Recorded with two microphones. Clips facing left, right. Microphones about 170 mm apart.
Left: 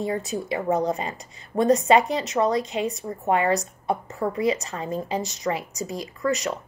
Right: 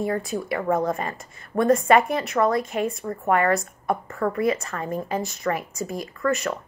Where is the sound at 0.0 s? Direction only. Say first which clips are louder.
Right 1 dB; 20° left (ahead or behind).